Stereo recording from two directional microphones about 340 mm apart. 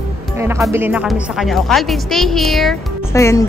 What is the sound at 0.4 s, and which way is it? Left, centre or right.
Speech, centre.